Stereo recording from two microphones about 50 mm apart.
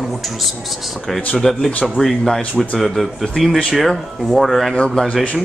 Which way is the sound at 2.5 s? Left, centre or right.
Left.